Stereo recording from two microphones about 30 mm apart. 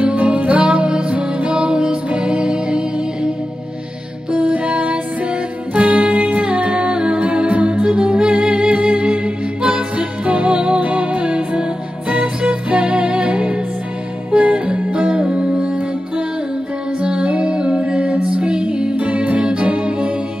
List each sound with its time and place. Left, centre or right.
0.0 s music: right
0.5 s music: right
4.6 s music: right
6.9 s music: right
7.2 s music: right
10.8 s music: right
18.9 s music: right